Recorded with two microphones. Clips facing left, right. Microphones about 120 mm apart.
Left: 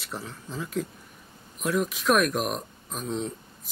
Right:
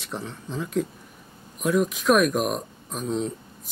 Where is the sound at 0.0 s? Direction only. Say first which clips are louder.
Right 3 dB; centre (ahead or behind).